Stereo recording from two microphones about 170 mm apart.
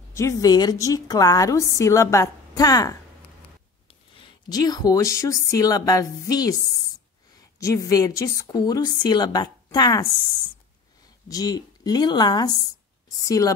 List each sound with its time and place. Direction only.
0.1 s a woman's voice: 15° left (ahead or behind)
4.1 s a woman's voice: 30° left (ahead or behind)
7.6 s a woman's voice: 20° left (ahead or behind)
11.2 s a woman's voice: 20° left (ahead or behind)